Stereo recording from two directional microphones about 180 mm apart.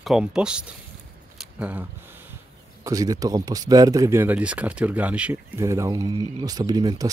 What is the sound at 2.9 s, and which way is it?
Speech, 20° right (ahead or behind).